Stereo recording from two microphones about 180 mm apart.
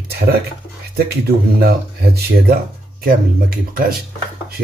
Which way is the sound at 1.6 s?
60° right (ahead or behind).